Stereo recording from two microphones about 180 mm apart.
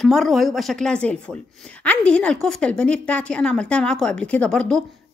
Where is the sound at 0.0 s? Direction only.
Centre (ahead or behind).